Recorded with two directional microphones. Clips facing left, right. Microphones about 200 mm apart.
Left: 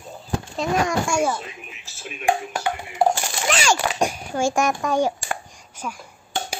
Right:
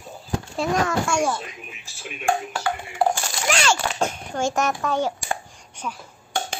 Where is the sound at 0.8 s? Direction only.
10° left (ahead or behind).